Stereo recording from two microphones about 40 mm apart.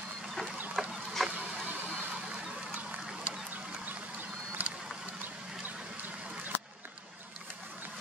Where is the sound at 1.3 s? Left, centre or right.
Right.